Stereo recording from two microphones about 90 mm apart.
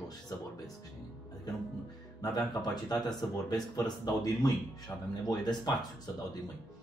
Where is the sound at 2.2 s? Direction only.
45° left (ahead or behind).